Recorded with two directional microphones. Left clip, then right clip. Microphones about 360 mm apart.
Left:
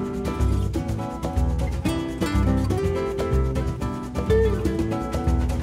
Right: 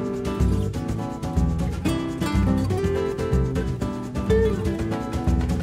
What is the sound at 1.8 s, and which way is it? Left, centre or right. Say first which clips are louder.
Music: even; centre.